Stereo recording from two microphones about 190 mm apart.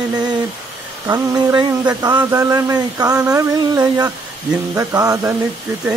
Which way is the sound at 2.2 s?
15° right (ahead or behind).